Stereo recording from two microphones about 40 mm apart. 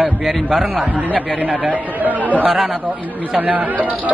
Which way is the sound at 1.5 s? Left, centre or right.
Right.